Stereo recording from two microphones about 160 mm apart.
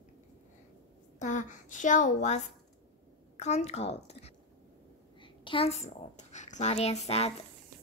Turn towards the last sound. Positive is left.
turn(degrees=40)  # may be behind; listen again after turning